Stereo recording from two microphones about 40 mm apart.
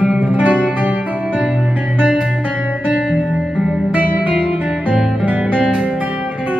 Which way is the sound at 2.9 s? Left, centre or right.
Right.